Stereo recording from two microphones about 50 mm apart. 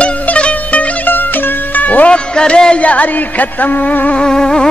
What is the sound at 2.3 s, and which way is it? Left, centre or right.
Music, centre.